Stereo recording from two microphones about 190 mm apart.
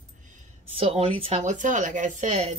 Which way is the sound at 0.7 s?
30° right (ahead or behind).